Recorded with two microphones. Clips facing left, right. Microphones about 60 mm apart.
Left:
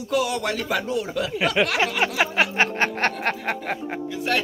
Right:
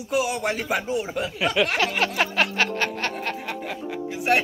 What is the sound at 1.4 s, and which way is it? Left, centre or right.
A man's voice, centre.